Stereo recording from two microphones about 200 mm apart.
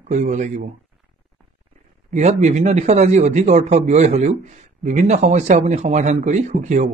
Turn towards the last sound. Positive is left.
turn(degrees=-35)  # may be behind; listen again after turning